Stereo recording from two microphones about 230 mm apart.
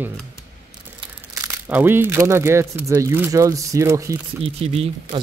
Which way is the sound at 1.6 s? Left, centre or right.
Centre.